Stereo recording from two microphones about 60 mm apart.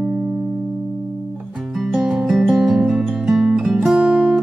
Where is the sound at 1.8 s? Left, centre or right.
Centre.